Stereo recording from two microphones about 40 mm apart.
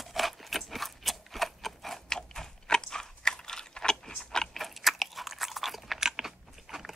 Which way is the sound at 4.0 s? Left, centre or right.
Centre.